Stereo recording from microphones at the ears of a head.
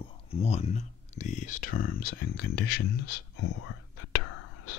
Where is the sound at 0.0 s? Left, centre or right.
Left.